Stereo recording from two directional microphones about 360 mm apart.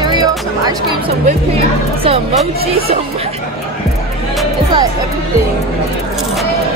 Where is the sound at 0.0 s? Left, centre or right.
Centre.